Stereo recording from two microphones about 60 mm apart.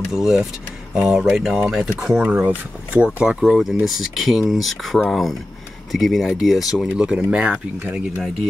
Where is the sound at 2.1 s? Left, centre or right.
Right.